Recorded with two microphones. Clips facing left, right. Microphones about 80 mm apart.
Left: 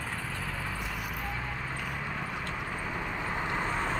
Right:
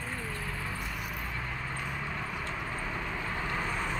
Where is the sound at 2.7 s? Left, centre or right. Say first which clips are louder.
Left 1 dB; centre; by 3.9 s left.